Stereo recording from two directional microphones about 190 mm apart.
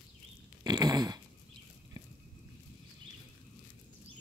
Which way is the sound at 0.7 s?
20° right (ahead or behind).